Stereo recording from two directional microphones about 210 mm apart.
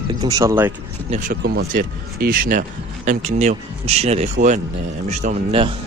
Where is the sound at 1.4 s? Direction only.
50° right (ahead or behind).